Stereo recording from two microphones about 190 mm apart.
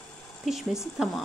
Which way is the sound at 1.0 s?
Centre (ahead or behind).